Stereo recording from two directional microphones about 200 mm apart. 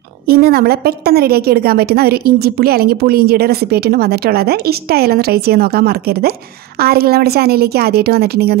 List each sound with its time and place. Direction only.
0.3 s a woman's voice: 50° right (ahead or behind)